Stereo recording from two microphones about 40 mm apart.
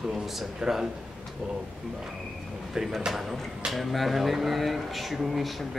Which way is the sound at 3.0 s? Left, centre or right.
Centre.